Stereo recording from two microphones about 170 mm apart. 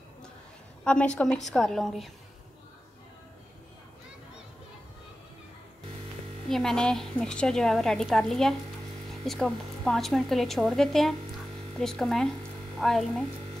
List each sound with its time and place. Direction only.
0.8 s a woman's voice: 5° left (ahead or behind)
6.5 s a woman's voice: 5° left (ahead or behind)